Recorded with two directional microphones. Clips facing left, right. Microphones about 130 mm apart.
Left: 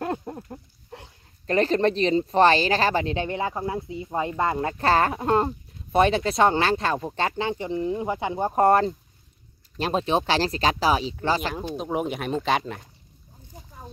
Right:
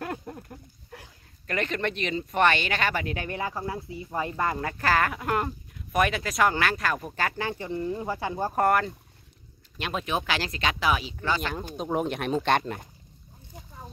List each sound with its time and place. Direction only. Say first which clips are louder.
0.0 s speech: left 5 dB; 25° left (ahead or behind)
11.7 s speech: right 1 dB; centre (ahead or behind)